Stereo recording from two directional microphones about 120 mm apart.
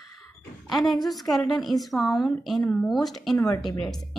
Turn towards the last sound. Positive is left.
turn(degrees=0)  # may be behind; listen again after turning